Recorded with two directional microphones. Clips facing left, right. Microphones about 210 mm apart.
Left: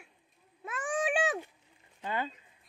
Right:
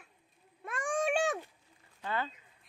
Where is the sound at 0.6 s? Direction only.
5° left (ahead or behind).